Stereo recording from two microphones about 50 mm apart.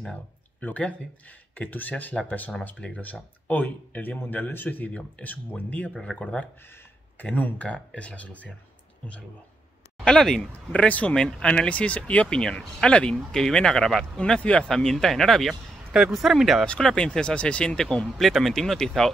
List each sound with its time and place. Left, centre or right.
0.6 s speech: left
6.1 s speech: centre
7.2 s speech: left
10.0 s speech: centre
10.7 s speech: left
11.1 s speech: centre
12.3 s speech: centre
14.4 s speech: left
14.7 s speech: centre
16.1 s speech: centre
16.6 s speech: centre
18.2 s speech: centre